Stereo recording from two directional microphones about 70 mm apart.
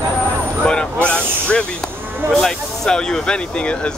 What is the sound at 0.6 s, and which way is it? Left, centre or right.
Speech, centre.